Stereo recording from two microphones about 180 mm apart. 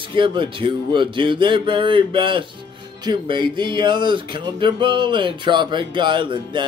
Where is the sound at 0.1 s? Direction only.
25° right (ahead or behind).